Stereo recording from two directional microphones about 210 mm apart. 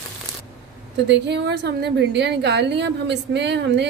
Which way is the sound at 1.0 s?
55° right (ahead or behind).